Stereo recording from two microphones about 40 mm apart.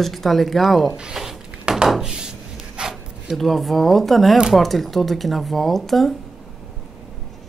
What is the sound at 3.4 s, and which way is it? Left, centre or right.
A woman's voice, centre.